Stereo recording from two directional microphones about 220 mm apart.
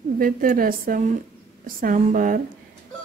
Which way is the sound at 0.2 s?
40° right (ahead or behind).